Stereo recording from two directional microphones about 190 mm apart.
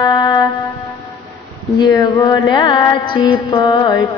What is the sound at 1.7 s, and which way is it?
Mantra, 20° left (ahead or behind).